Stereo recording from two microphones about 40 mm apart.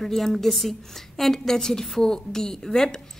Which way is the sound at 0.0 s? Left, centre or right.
Centre.